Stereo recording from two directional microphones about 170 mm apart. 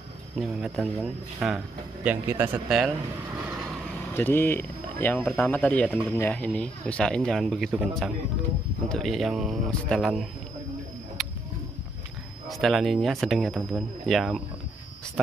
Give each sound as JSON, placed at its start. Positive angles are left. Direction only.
{"t": 0.4, "sound": "speech", "side_deg": 0}
{"t": 2.0, "sound": "a man's voice", "side_deg": -10}
{"t": 4.1, "sound": "speech", "side_deg": 15}
{"t": 11.2, "sound": "a sound", "side_deg": 0}
{"t": 12.4, "sound": "speech", "side_deg": 0}